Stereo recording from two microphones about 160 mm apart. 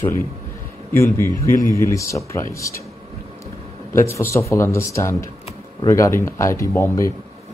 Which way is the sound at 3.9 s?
15° left (ahead or behind).